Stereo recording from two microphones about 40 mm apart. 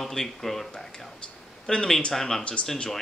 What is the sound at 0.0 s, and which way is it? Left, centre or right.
Speech, centre.